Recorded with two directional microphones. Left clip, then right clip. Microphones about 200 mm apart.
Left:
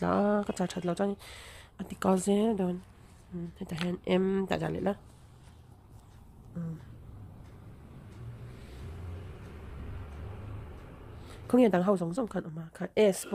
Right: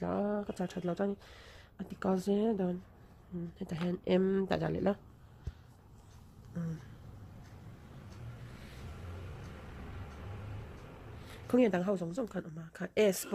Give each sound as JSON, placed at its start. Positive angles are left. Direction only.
{"t": 0.0, "sound": "speech", "side_deg": 15}
{"t": 6.5, "sound": "speech", "side_deg": 0}
{"t": 11.2, "sound": "speech", "side_deg": 15}